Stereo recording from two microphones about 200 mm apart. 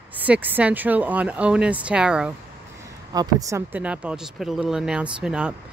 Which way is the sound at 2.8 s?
20° right (ahead or behind).